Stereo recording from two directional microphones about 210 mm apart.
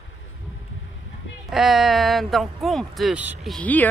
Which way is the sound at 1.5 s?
Centre (ahead or behind).